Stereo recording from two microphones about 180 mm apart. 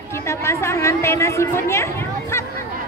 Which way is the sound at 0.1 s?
15° left (ahead or behind).